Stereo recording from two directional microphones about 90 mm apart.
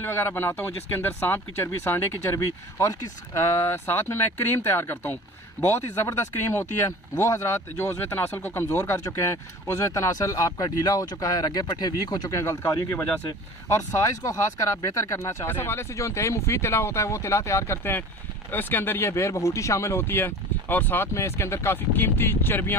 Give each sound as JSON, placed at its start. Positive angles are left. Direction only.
{"t": 0.0, "sound": "speech", "side_deg": 25}
{"t": 2.3, "sound": "speech", "side_deg": 35}
{"t": 6.0, "sound": "speech", "side_deg": 35}
{"t": 12.4, "sound": "speech", "side_deg": 35}